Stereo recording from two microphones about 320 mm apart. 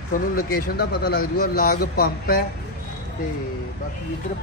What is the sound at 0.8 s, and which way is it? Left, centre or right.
Speech, left.